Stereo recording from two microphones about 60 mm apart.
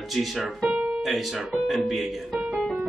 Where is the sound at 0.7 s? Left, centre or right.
Right.